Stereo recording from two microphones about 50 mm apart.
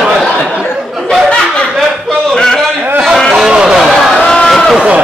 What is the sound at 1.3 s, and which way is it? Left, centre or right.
Snicker, centre.